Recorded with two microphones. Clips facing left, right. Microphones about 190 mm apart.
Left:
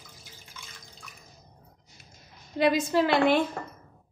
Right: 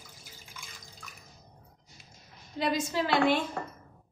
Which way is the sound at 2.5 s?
60° left (ahead or behind).